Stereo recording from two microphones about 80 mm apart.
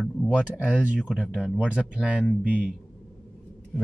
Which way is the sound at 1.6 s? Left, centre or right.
Centre.